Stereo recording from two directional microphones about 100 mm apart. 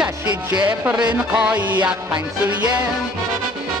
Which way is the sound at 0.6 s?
15° right (ahead or behind).